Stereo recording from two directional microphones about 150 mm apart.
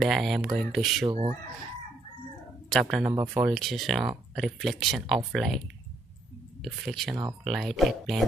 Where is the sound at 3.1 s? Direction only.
20° right (ahead or behind).